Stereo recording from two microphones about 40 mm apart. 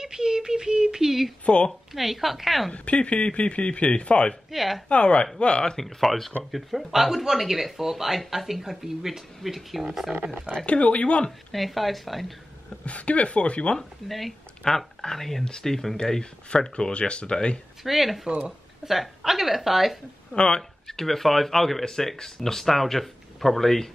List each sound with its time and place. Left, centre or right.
0.0 s a sound: centre
1.4 s speech: left
1.7 s speech: centre
2.7 s speech: left
4.5 s speech: centre
4.8 s speech: left
5.8 s speech: centre
10.5 s speech: left
11.5 s speech: centre
12.8 s speech: left
14.0 s speech: centre
14.6 s speech: centre
17.8 s speech: centre
20.3 s speech: centre